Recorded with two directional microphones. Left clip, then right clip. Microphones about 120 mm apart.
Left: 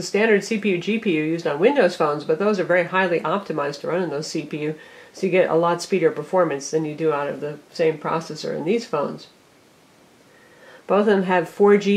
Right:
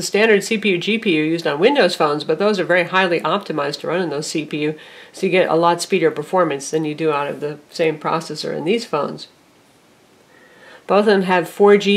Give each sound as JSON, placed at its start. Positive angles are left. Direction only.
{"t": 0.1, "sound": "speech", "side_deg": -30}
{"t": 10.9, "sound": "speech", "side_deg": -30}